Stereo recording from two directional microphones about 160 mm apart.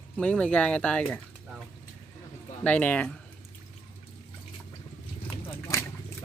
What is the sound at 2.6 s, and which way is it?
Speech, 10° left (ahead or behind).